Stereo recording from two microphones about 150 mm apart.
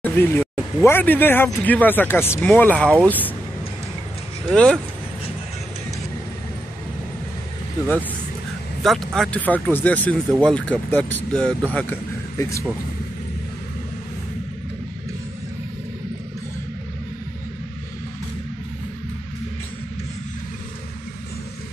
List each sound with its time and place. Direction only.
0.0 s speech: 15° left (ahead or behind)
4.5 s speech: 5° left (ahead or behind)
8.8 s speech: centre (ahead or behind); by 12.6 s 20° left (ahead or behind)